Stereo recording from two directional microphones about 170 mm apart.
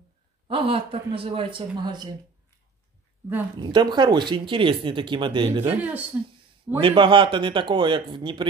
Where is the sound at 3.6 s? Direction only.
25° right (ahead or behind).